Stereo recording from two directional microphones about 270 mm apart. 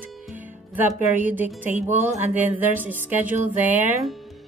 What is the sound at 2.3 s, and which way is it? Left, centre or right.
A woman's voice, centre.